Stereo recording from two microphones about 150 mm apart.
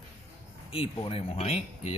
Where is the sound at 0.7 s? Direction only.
35° left (ahead or behind).